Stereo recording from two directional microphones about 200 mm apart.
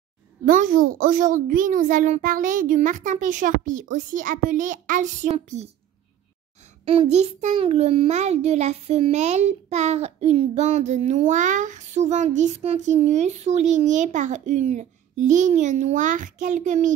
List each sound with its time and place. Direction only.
0.5 s a child's voice: 40° right (ahead or behind)
6.9 s a child's voice: 30° right (ahead or behind)